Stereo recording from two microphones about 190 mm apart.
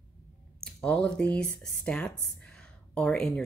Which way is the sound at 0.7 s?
5° left (ahead or behind).